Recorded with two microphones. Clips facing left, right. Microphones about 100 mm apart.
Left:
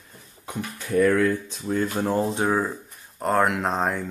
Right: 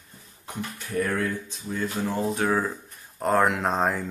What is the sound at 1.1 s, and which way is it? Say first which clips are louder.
Speech: left 6 dB; 85° left.